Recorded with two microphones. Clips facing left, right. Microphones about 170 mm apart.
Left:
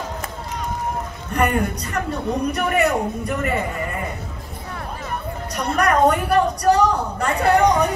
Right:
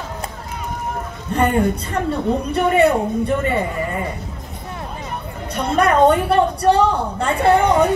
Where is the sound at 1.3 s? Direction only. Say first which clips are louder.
Right 3 dB; 25° right (ahead or behind).